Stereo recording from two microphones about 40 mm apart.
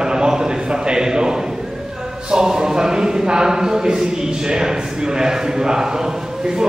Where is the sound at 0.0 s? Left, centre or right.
Centre.